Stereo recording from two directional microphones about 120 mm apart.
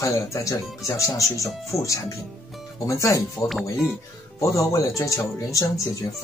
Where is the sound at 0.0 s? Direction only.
25° left (ahead or behind).